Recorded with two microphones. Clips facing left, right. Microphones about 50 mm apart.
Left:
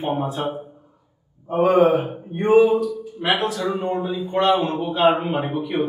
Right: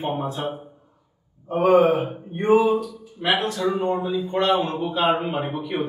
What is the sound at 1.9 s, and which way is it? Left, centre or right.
Speech, left.